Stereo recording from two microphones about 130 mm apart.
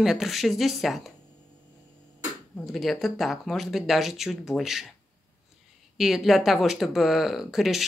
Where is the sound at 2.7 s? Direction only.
Centre (ahead or behind).